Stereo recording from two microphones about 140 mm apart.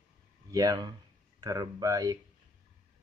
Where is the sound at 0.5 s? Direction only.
25° right (ahead or behind).